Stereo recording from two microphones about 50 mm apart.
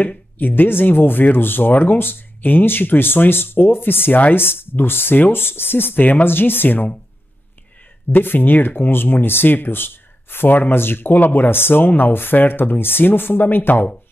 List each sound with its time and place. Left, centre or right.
0.4 s speech: left
8.1 s speech: left